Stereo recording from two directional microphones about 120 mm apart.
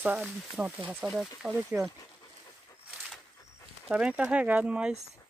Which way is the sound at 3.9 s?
10° right (ahead or behind).